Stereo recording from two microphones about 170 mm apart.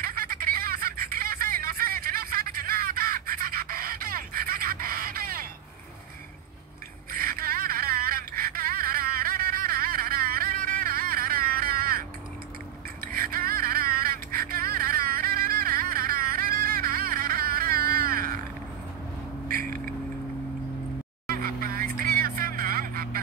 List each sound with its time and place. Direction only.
0.0 s music: 60° right (ahead or behind)
7.1 s a sound: 55° right (ahead or behind)
13.0 s music: 60° right (ahead or behind)
19.4 s vehicle: 55° right (ahead or behind)
21.3 s vehicle: 60° right (ahead or behind)